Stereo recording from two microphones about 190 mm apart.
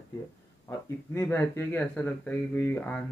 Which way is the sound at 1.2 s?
15° left (ahead or behind).